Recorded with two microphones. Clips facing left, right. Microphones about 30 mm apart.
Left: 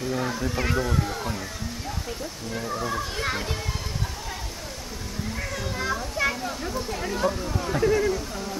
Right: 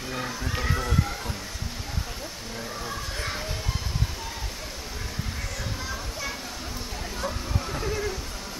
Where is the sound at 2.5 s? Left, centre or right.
Centre.